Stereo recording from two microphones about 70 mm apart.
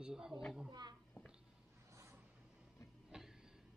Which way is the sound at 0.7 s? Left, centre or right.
Right.